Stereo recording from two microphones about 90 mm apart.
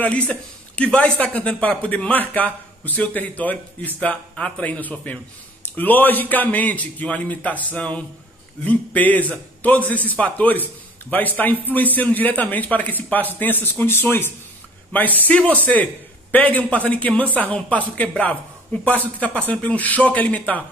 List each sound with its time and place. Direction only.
0.0 s a man's voice: 15° left (ahead or behind)